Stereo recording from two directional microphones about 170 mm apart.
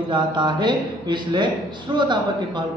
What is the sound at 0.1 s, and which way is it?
Mantra, 25° right (ahead or behind).